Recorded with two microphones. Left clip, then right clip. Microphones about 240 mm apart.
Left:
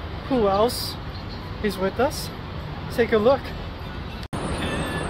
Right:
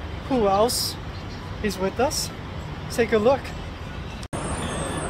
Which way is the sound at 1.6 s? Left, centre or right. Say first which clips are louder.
Left 1 dB; centre.